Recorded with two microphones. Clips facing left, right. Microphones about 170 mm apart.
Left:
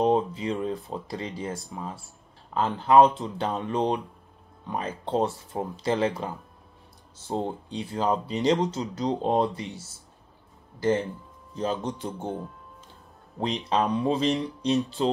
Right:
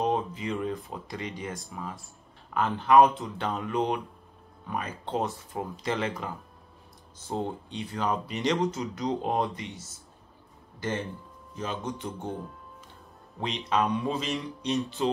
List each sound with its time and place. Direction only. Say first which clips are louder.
0.0 s speech: left 5 dB; 30° left (ahead or behind)
11.5 s speech: left 5 dB; 30° left (ahead or behind)
13.4 s speech: left 2 dB; 30° left (ahead or behind)